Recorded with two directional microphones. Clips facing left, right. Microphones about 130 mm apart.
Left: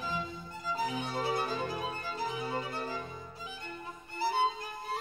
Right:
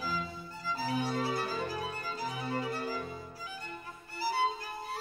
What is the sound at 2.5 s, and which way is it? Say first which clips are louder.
Music: right 1 dB; 25° left (ahead or behind).